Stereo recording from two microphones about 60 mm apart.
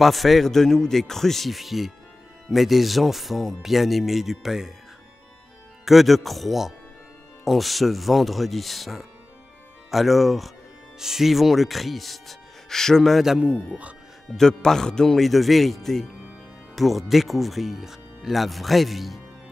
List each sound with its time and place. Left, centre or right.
0.0 s speech: centre
5.9 s speech: centre
14.3 s speech: centre